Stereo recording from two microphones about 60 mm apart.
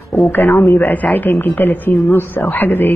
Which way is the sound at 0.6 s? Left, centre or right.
Left.